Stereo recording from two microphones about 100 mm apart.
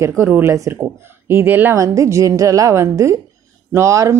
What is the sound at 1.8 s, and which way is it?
Speech, 30° right (ahead or behind).